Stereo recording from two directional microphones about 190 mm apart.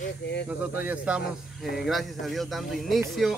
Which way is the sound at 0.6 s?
10° right (ahead or behind).